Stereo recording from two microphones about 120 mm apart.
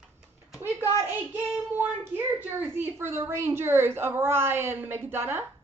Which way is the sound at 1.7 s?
15° right (ahead or behind).